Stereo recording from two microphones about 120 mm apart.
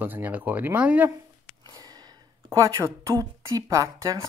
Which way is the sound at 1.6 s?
35° right (ahead or behind).